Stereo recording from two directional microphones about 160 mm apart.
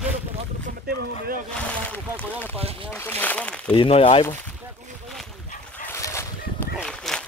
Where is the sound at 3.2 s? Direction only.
10° left (ahead or behind).